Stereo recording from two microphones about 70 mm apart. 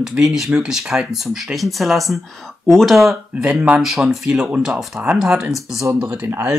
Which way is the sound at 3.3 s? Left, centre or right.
Centre.